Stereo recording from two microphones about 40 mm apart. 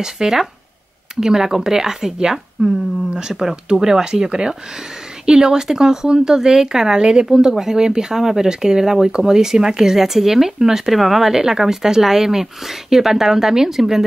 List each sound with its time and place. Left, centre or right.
0.0 s speech: centre
2.6 s speech: right
3.2 s speech: centre